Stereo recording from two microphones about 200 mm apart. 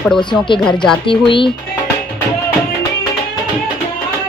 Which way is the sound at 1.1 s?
25° left (ahead or behind).